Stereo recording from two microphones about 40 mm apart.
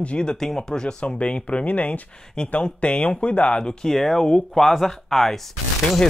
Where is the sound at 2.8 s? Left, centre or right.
Left.